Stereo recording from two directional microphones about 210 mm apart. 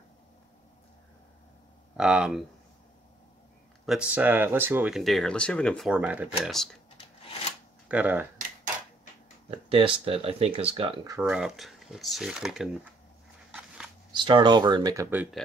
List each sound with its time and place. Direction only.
2.0 s speech: 5° right (ahead or behind)
3.8 s speech: 5° right (ahead or behind)
7.9 s speech: 10° right (ahead or behind)
9.7 s speech: 25° right (ahead or behind)
11.1 s speech: 5° right (ahead or behind)
13.5 s biting: 5° right (ahead or behind)
14.1 s speech: 20° right (ahead or behind)